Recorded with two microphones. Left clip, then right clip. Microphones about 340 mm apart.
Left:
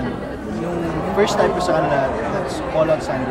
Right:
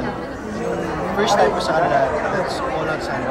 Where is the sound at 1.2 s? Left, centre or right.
Centre.